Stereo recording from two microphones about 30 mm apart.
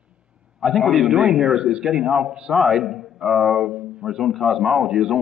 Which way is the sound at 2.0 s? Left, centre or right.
Right.